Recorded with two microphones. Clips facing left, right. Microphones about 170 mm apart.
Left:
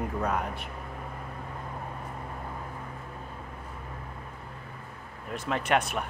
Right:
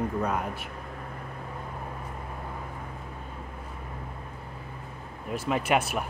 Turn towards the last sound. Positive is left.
turn(degrees=-5)  # may be behind; listen again after turning